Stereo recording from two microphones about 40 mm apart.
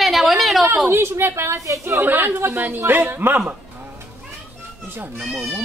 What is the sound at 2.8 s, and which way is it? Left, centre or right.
Speech, right.